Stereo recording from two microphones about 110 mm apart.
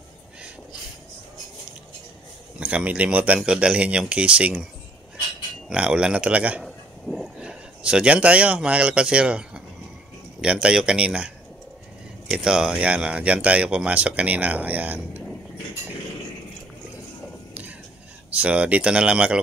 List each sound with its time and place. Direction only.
2.6 s speech: 10° right (ahead or behind)
5.7 s speech: 10° right (ahead or behind)
6.6 s a sound: centre (ahead or behind)
10.4 s speech: 10° right (ahead or behind)
18.3 s speech: 10° right (ahead or behind)